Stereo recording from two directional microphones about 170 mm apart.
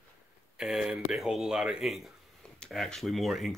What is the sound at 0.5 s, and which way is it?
Speech, 5° right (ahead or behind).